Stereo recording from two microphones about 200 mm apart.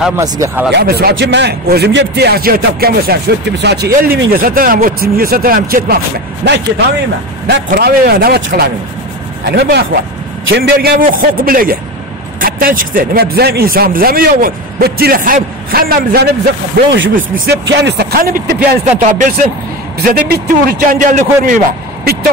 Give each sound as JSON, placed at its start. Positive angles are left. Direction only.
{"t": 0.2, "sound": "speech", "side_deg": -15}
{"t": 0.7, "sound": "speech", "side_deg": -55}
{"t": 6.4, "sound": "speech", "side_deg": -60}
{"t": 16.7, "sound": "speech", "side_deg": -65}